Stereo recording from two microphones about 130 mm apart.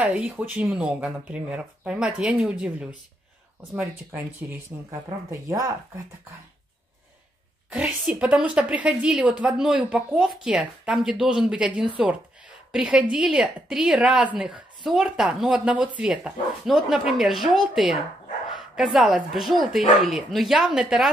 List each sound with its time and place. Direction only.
0.0 s a woman's voice: 10° right (ahead or behind)
5.3 s speech: 25° right (ahead or behind)
7.7 s a woman's voice: 10° right (ahead or behind)
18.9 s a woman's voice: 5° right (ahead or behind)